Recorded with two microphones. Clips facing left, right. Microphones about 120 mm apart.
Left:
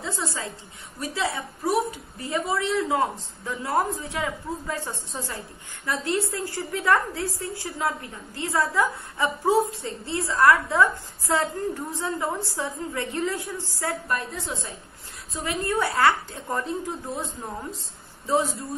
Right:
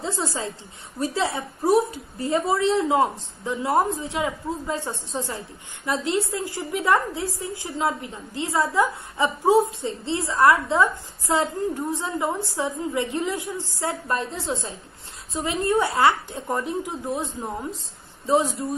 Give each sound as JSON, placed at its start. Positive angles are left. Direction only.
{"t": 0.0, "sound": "a woman's voice", "side_deg": -30}